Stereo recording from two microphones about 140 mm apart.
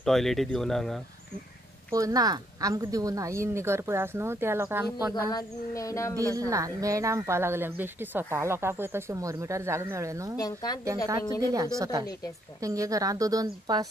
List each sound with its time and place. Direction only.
0.0 s speech: centre (ahead or behind)
2.0 s speech: 25° right (ahead or behind)
5.3 s speech: 25° left (ahead or behind)
6.1 s speech: 25° right (ahead or behind)
10.3 s speech: 25° left (ahead or behind)
11.4 s speech: 25° right (ahead or behind)